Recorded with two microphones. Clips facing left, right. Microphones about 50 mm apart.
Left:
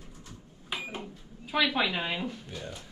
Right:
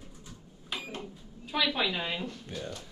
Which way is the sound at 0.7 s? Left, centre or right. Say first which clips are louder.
Left 2 dB; centre.